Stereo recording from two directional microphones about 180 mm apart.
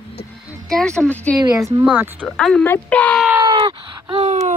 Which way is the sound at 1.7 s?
10° right (ahead or behind).